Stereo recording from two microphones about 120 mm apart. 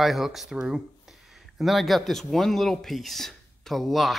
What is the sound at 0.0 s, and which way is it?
Speech, centre (ahead or behind).